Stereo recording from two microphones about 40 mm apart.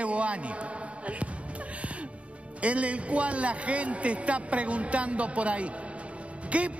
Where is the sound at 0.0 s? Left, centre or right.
Right.